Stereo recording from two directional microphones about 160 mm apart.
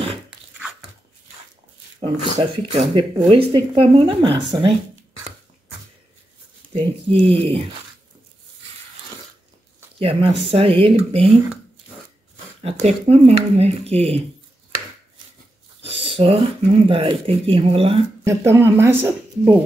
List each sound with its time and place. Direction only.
2.0 s speech: 40° right (ahead or behind)
6.7 s speech: 40° right (ahead or behind)
9.9 s speech: 35° right (ahead or behind)
12.8 s speech: 40° right (ahead or behind)
15.8 s a sound: 40° right (ahead or behind)
16.8 s speech: 35° right (ahead or behind)
18.2 s speech: 15° right (ahead or behind)